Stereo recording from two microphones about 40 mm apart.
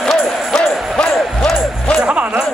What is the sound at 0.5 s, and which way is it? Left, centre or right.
Music, centre.